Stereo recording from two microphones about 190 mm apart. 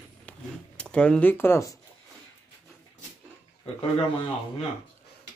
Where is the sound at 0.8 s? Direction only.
5° left (ahead or behind).